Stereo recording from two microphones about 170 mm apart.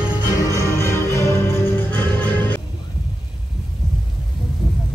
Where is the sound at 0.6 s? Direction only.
15° left (ahead or behind).